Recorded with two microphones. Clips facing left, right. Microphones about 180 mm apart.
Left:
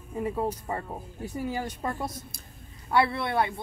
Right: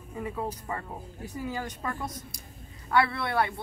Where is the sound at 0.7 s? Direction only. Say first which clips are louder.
Left 3 dB; 30° left (ahead or behind).